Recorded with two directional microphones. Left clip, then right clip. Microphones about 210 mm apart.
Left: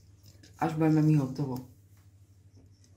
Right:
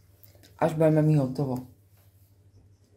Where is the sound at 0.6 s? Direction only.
35° right (ahead or behind).